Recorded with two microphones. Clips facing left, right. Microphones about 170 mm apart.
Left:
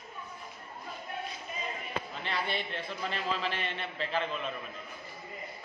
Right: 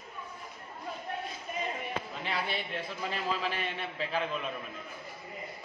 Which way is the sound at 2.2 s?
5° right (ahead or behind).